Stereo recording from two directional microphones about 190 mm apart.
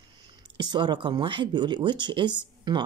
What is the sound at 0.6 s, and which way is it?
Speech, 25° right (ahead or behind).